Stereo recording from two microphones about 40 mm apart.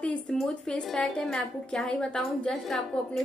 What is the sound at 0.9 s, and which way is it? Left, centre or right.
A woman's voice, centre.